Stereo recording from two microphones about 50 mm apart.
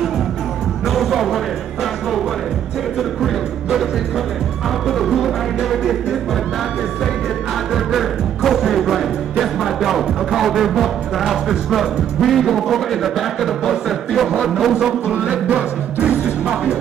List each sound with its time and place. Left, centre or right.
0.9 s music: centre
4.8 s music: centre
7.7 s music: centre
15.0 s music: right